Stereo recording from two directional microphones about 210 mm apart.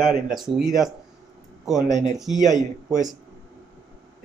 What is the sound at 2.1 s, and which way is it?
Speech, centre (ahead or behind).